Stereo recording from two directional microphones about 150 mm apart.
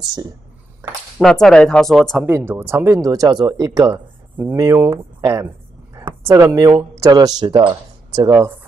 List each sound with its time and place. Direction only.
0.0 s speech: 25° right (ahead or behind)
1.1 s speech: 5° left (ahead or behind)
2.2 s speech: 15° right (ahead or behind); by 8.3 s 35° right (ahead or behind)
8.3 s speech: 20° right (ahead or behind)